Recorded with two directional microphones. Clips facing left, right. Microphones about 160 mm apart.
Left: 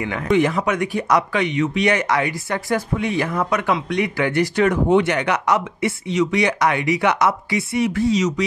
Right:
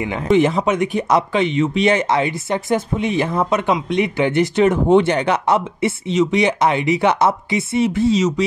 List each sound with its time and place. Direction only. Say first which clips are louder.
0.0 s speech: right 3 dB; 25° right (ahead or behind)